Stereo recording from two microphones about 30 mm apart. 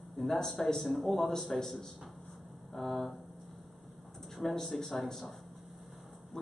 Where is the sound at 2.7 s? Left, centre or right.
Centre.